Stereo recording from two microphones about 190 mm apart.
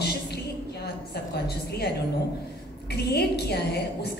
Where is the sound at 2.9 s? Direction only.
55° left (ahead or behind).